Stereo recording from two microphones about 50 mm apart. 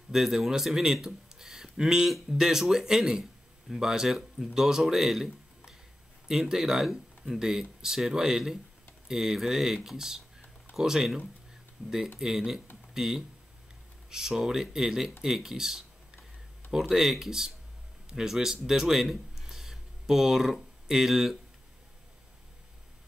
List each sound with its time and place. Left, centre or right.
0.1 s speech: centre
11.8 s speech: right
12.2 s speech: centre
16.9 s speech: centre